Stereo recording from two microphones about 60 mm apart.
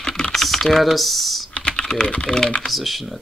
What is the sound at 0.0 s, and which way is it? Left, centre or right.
Typing, centre.